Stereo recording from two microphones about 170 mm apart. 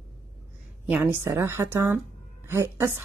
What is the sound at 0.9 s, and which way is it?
A woman's voice, 10° right (ahead or behind).